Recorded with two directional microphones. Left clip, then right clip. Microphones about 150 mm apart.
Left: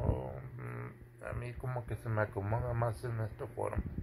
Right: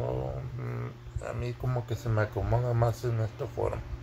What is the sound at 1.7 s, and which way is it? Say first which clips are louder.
Speech: right 4 dB; 20° left (ahead or behind).